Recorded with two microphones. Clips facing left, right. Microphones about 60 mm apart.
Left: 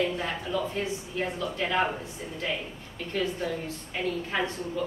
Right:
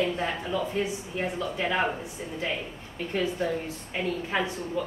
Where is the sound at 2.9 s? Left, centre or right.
Centre.